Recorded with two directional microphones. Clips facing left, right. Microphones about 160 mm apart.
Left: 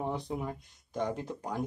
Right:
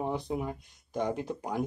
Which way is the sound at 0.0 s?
10° right (ahead or behind).